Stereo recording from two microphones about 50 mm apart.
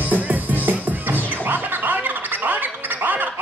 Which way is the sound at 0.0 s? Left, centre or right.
Right.